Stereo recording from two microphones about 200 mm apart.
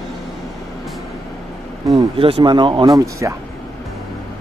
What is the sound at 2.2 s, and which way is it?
Speech, 25° right (ahead or behind).